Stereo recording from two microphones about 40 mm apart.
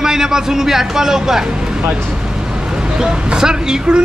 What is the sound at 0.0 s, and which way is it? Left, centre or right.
Speech, centre.